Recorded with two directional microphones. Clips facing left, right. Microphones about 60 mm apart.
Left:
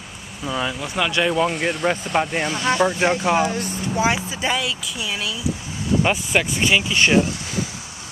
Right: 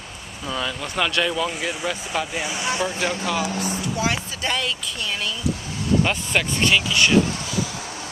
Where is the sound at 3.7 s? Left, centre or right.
Left.